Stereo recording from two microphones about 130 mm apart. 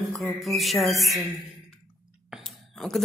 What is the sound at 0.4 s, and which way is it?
Speech, centre (ahead or behind).